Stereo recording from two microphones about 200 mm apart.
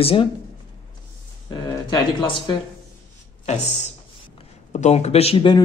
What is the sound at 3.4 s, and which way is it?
Speech, 35° left (ahead or behind).